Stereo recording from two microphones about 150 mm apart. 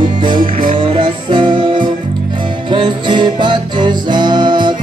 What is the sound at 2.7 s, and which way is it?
Music, 30° right (ahead or behind).